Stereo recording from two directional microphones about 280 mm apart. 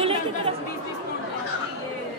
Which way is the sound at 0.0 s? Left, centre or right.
Centre.